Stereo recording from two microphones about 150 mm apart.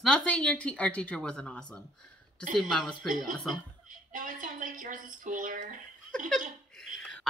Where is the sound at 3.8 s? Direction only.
60° right (ahead or behind).